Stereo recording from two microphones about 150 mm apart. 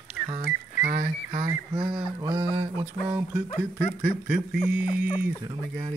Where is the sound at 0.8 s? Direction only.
65° right (ahead or behind).